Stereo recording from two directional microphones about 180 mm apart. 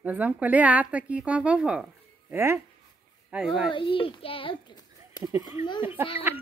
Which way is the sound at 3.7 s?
30° left (ahead or behind).